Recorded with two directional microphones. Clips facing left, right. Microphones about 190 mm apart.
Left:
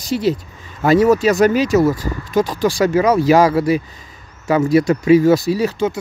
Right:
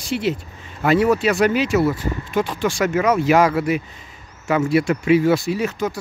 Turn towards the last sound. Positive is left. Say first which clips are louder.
# left 4 dB
turn(degrees=30)  # may be behind; listen again after turning